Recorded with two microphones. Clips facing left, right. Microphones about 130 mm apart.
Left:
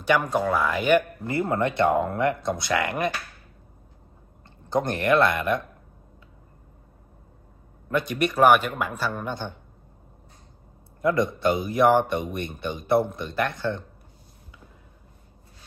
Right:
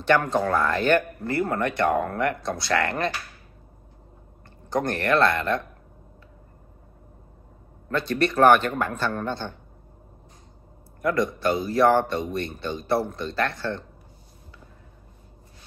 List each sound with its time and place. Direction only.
0.0 s speech: 10° left (ahead or behind)
4.6 s speech: 20° left (ahead or behind)
7.9 s speech: 15° left (ahead or behind)
11.0 s speech: 20° left (ahead or behind)